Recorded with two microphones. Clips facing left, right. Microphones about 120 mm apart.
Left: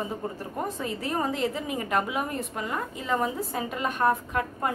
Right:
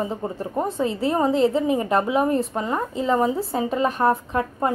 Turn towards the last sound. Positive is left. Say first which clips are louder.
# right 5 dB
turn(degrees=-30)  # may be behind; listen again after turning